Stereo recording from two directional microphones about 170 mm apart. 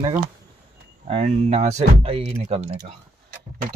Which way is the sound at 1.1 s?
40° right (ahead or behind).